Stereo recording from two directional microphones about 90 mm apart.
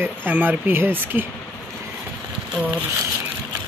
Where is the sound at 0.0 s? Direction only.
20° right (ahead or behind).